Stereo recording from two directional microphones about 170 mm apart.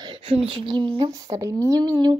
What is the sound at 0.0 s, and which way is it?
A child's voice, 30° right (ahead or behind).